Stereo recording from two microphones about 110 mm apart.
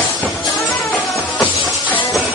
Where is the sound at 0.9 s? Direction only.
15° left (ahead or behind).